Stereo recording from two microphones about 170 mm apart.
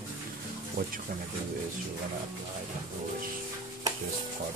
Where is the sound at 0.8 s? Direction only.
55° right (ahead or behind).